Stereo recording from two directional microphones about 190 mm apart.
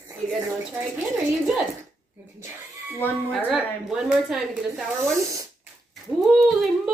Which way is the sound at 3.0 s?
10° left (ahead or behind).